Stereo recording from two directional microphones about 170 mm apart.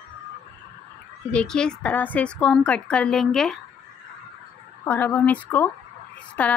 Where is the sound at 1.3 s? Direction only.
5° left (ahead or behind).